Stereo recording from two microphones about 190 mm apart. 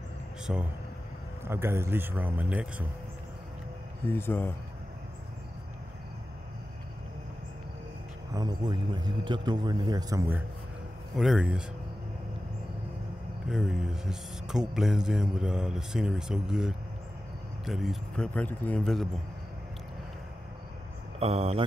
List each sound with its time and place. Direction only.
0.5 s speech: 5° right (ahead or behind)
4.0 s speech: 10° left (ahead or behind)
8.3 s a man's voice: 20° right (ahead or behind)
11.1 s speech: 5° right (ahead or behind)
13.5 s speech: 5° right (ahead or behind)
21.2 s speech: 30° right (ahead or behind)